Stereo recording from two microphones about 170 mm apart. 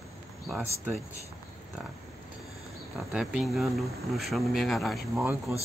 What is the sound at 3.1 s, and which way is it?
Speech, 5° right (ahead or behind).